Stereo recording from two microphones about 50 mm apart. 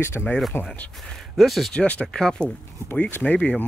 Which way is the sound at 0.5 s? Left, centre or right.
Left.